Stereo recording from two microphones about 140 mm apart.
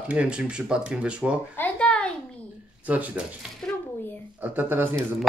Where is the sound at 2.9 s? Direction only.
10° right (ahead or behind).